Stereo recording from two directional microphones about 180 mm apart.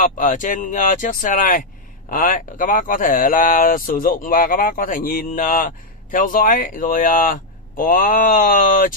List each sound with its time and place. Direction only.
0.0 s speech: 45° left (ahead or behind)